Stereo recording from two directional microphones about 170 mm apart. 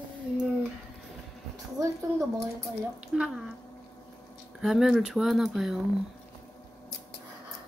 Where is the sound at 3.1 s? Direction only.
Centre (ahead or behind).